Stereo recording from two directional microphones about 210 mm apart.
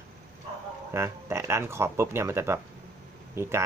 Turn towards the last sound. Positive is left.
turn(degrees=-15)  # may be behind; listen again after turning